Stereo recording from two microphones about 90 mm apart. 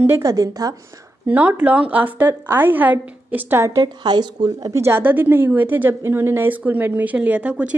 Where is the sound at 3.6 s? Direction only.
50° right (ahead or behind).